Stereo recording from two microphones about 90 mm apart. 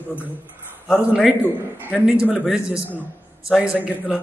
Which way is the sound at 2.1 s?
10° right (ahead or behind).